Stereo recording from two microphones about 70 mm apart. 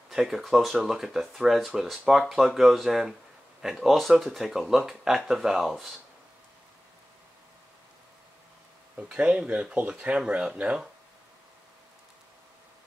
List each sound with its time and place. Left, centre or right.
0.1 s speech: centre
8.9 s speech: centre